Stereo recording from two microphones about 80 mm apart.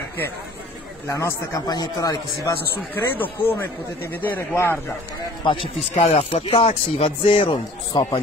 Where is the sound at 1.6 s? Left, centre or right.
Left.